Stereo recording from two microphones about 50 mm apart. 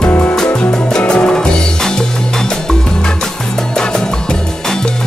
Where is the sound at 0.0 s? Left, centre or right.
Left.